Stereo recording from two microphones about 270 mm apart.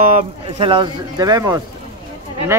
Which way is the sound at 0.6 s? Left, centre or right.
Centre.